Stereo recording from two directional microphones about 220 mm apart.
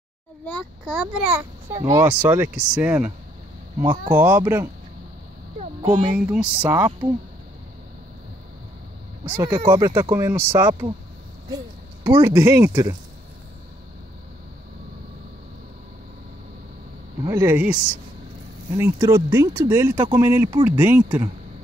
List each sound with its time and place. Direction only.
0.5 s a child's voice: 5° left (ahead or behind)
4.1 s a child's voice: 10° right (ahead or behind)
5.6 s a sound: 30° right (ahead or behind)
6.1 s a child's voice: 5° right (ahead or behind)
9.2 s a child's voice: 15° right (ahead or behind)
17.2 s a child's voice: 10° right (ahead or behind)
18.8 s a child's voice: 10° right (ahead or behind)